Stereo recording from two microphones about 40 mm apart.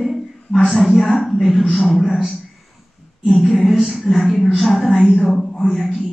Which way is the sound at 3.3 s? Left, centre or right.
Centre.